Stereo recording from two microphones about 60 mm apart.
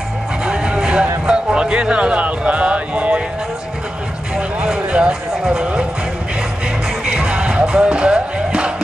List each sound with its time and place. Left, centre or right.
0.5 s music: centre
4.6 s music: centre
7.1 s music: centre